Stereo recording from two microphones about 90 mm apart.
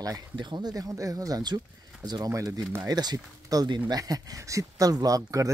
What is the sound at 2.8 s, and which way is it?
Speech, 50° right (ahead or behind).